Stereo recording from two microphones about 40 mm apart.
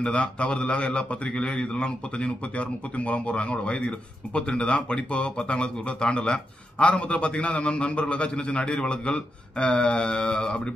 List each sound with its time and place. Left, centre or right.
0.0 s speech: left